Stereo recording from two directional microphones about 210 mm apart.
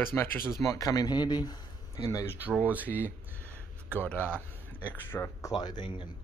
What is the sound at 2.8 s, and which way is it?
Speech, 10° left (ahead or behind).